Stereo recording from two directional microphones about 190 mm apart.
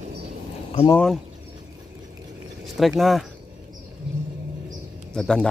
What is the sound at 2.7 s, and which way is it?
Speech, centre (ahead or behind).